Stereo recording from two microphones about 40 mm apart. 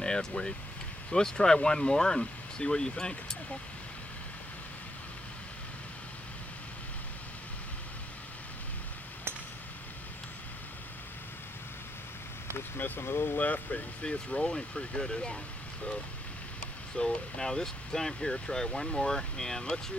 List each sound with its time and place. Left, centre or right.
0.0 s speech: centre
12.7 s speech: left
13.4 s speech: left
14.0 s speech: left
16.9 s speech: left